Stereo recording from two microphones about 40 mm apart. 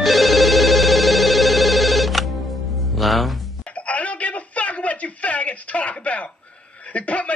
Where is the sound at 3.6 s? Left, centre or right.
Left.